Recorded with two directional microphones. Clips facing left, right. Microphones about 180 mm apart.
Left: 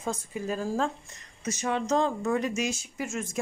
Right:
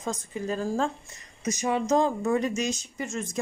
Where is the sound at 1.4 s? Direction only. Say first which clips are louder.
Right 3 dB; 15° right (ahead or behind).